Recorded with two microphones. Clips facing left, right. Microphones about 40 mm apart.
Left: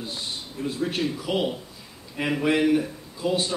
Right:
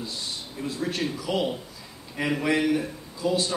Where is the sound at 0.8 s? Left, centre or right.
Left.